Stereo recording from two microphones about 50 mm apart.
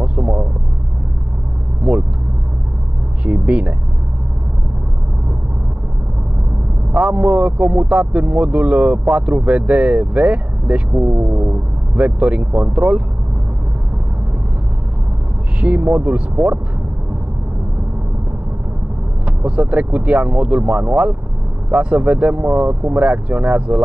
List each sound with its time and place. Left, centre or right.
0.0 s vehicle: right
1.8 s vehicle: right
3.3 s a sound: right
6.9 s speech: right
15.6 s speech: right
19.2 s speech: right